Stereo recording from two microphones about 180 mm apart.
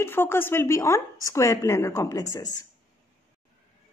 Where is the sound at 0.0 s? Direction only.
15° left (ahead or behind).